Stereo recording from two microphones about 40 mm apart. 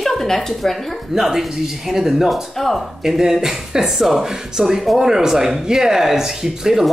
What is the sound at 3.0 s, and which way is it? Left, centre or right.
Speech, centre.